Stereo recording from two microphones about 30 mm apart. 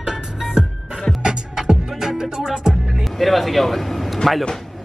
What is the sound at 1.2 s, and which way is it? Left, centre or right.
Music, centre.